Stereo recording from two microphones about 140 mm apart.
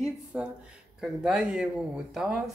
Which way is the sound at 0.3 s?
10° right (ahead or behind).